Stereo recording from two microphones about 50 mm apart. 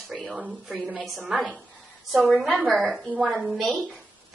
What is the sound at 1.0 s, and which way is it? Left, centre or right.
Speech, centre.